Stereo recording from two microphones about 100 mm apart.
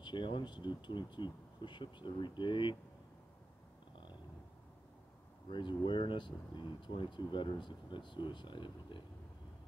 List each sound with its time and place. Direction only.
0.0 s speech: 50° left (ahead or behind)
5.5 s speech: 50° left (ahead or behind)